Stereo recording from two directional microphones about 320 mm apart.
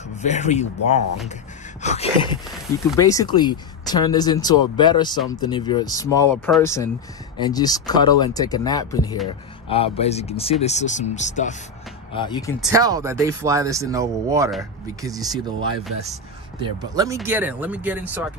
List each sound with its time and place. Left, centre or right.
0.2 s speech: left
12.5 s speech: centre
16.6 s speech: centre